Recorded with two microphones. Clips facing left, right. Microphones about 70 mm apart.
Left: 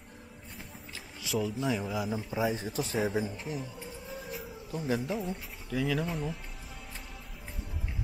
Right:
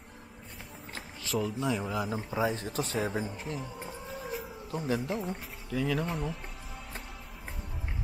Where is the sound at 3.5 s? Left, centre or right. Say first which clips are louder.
Even; right.